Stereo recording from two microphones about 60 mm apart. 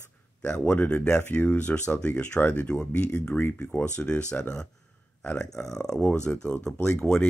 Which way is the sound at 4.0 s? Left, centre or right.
Centre.